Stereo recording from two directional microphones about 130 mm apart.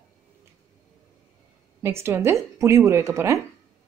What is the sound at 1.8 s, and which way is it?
Speech, 20° right (ahead or behind).